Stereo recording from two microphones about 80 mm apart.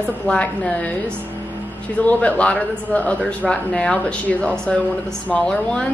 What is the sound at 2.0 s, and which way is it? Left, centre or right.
Speech, centre.